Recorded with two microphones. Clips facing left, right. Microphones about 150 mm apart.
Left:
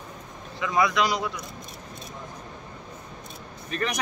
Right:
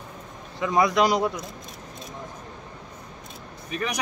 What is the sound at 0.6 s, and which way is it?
Speech, 40° right (ahead or behind).